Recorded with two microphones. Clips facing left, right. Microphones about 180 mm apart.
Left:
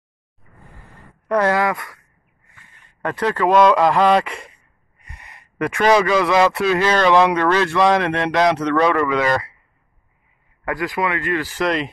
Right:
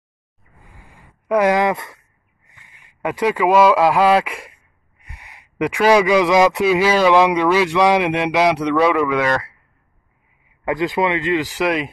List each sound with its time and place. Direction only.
0.6 s a sound: 10° right (ahead or behind)
2.4 s speech: 15° right (ahead or behind); by 9.6 s centre (ahead or behind)
10.6 s speech: 20° right (ahead or behind)